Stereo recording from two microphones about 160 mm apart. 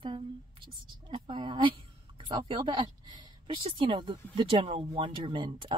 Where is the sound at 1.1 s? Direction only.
30° right (ahead or behind).